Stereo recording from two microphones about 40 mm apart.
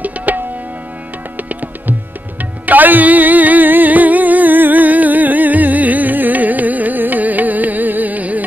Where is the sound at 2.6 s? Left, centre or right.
Right.